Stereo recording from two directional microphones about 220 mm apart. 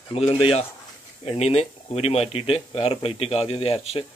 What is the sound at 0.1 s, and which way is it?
Speech, 25° left (ahead or behind).